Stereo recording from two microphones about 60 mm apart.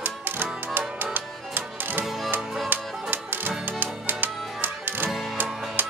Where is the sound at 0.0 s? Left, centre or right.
Right.